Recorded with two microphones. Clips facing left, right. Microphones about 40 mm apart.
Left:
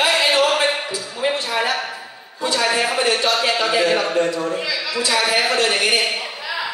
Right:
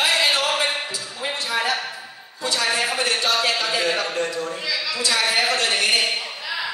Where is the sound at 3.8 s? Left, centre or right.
Centre.